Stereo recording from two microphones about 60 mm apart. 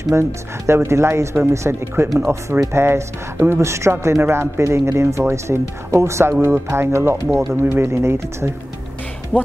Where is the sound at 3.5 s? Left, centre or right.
Right.